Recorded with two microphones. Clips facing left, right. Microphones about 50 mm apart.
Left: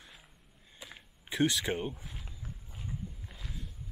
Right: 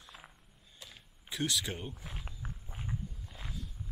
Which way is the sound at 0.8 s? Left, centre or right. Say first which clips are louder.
Left 4 dB; left.